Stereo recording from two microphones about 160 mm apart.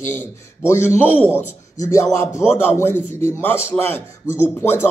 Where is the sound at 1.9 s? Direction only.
20° left (ahead or behind).